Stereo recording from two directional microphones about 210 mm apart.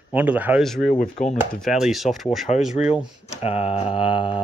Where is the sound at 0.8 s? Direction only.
35° left (ahead or behind).